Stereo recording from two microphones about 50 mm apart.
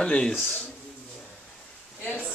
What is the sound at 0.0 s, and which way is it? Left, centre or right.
Speech, centre.